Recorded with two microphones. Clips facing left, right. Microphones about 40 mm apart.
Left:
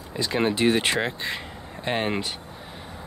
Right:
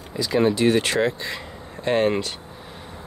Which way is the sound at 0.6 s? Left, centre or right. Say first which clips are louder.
Right 3 dB; centre.